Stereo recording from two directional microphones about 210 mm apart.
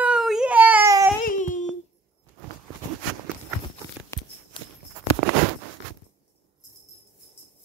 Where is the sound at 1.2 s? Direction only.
35° left (ahead or behind).